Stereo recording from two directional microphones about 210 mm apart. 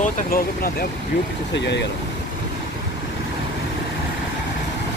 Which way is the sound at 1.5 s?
55° left (ahead or behind).